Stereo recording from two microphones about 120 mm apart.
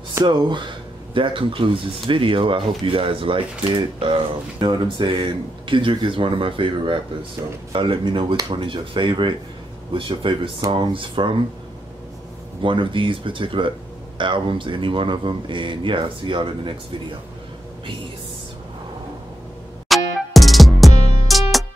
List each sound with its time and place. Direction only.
0.2 s speech: 40° right (ahead or behind)
12.6 s speech: 45° right (ahead or behind)
19.9 s music: centre (ahead or behind)